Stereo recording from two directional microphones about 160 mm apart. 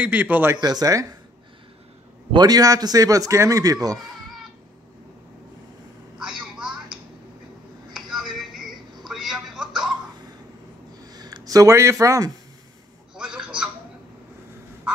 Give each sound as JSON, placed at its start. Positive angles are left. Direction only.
{"t": 0.0, "sound": "speech", "side_deg": -10}
{"t": 0.6, "sound": "speech", "side_deg": -25}
{"t": 2.3, "sound": "speech", "side_deg": -25}
{"t": 6.1, "sound": "a sound", "side_deg": -5}
{"t": 11.1, "sound": "speech", "side_deg": -25}
{"t": 13.1, "sound": "a sound", "side_deg": -5}